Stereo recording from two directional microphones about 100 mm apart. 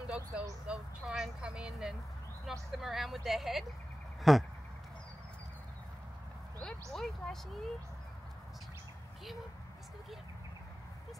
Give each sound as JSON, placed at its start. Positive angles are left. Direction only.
{"t": 0.0, "sound": "vehicle", "side_deg": -10}
{"t": 0.7, "sound": "speech", "side_deg": -5}
{"t": 6.6, "sound": "speech", "side_deg": 5}